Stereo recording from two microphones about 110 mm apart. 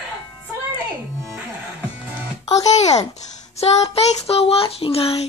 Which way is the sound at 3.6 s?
70° left (ahead or behind).